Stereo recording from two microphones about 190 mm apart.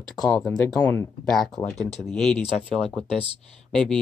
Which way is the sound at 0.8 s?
10° left (ahead or behind).